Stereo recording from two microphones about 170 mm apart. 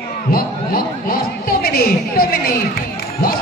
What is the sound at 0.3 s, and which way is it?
A woman's voice, 60° left (ahead or behind).